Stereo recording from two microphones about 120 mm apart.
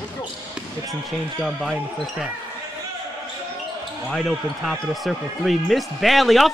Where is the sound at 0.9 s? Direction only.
Centre (ahead or behind).